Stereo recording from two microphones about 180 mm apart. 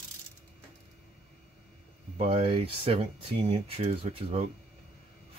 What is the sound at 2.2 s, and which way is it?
Speech, 35° right (ahead or behind).